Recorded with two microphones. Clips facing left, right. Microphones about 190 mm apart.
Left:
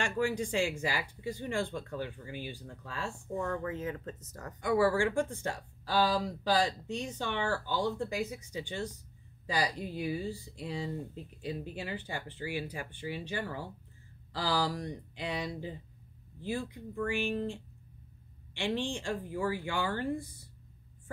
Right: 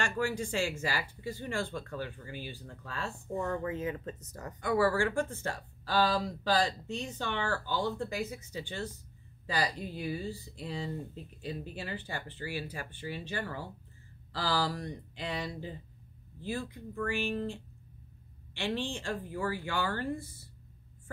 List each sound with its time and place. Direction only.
0.0 s speech: 15° left (ahead or behind)
3.3 s speech: 20° right (ahead or behind)
4.6 s speech: 15° left (ahead or behind)